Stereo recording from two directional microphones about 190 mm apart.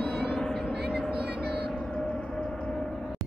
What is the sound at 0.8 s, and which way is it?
Vehicle, 5° right (ahead or behind).